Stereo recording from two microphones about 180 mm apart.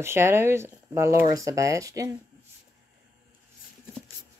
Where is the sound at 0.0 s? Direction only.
15° right (ahead or behind).